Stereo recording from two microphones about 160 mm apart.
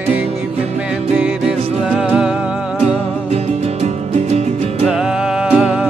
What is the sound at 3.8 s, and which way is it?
Music, 45° right (ahead or behind).